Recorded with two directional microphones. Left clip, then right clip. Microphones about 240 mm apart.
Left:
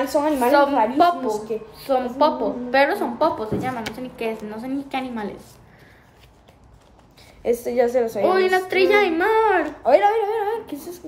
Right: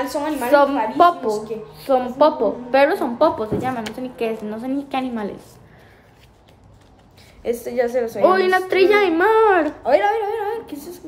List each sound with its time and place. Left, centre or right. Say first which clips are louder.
0.1 s speech: even; centre
0.9 s a woman's voice: right 3 dB; centre
7.4 s speech: left 1 dB; centre
8.2 s a woman's voice: right 5 dB; centre
9.8 s speech: left 3 dB; centre